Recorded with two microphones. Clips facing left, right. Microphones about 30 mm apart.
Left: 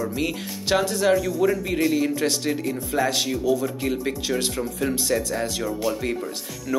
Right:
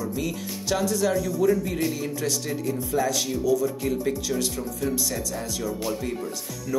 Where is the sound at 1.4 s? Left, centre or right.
Left.